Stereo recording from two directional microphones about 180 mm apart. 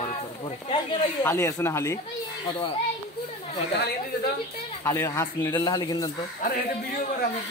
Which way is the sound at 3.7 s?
65° left (ahead or behind).